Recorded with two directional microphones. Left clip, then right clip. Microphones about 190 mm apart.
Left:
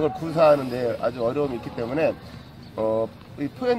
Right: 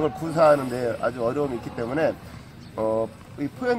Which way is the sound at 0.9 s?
Centre (ahead or behind).